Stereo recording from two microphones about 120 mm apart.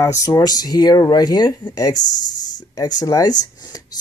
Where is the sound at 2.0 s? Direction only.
90° left.